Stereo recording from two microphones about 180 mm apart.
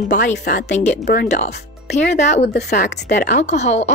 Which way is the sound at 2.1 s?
40° left (ahead or behind).